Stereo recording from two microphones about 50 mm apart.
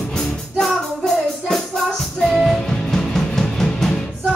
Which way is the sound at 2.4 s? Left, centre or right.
Centre.